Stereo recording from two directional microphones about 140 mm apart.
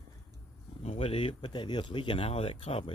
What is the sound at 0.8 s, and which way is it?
Speech, 45° left (ahead or behind).